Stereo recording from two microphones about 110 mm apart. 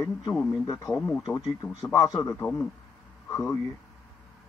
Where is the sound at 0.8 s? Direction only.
10° left (ahead or behind).